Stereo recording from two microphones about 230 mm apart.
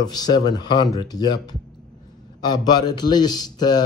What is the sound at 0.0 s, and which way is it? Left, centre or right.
Speech, centre.